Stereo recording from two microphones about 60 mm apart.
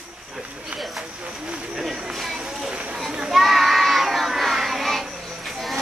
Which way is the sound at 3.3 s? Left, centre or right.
Centre.